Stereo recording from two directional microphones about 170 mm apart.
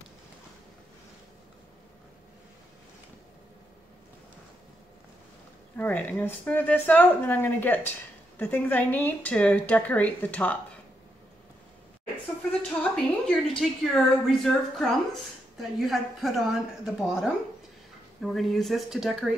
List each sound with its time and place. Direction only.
5.8 s speech: 10° left (ahead or behind)
12.9 s a woman's voice: 5° left (ahead or behind)